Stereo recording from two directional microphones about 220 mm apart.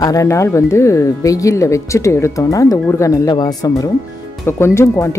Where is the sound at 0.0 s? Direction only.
15° left (ahead or behind).